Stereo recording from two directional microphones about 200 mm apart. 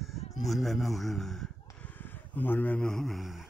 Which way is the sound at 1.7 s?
10° left (ahead or behind).